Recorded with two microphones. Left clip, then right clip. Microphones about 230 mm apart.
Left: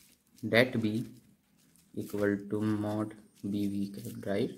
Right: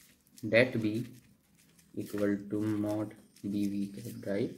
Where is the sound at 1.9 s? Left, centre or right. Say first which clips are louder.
Left 1 dB; left.